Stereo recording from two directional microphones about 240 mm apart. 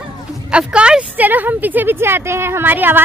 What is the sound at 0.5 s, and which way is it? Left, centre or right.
Speech, centre.